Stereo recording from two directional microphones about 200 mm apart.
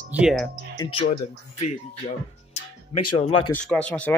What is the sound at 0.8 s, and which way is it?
Speech, 25° left (ahead or behind).